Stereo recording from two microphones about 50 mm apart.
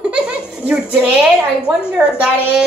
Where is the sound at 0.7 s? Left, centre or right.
Right.